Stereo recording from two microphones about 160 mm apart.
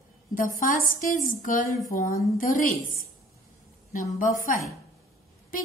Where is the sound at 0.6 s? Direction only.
60° left (ahead or behind).